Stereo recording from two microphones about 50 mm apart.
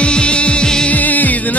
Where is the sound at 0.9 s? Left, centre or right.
Left.